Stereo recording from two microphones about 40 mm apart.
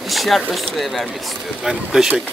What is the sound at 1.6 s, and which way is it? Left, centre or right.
Speech, centre.